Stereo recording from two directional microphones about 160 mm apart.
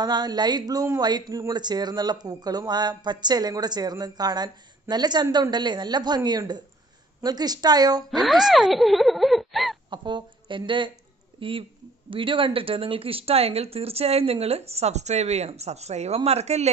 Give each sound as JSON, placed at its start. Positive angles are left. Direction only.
{"t": 0.0, "sound": "speech", "side_deg": -25}
{"t": 8.1, "sound": "music", "side_deg": 0}
{"t": 9.8, "sound": "speech", "side_deg": -30}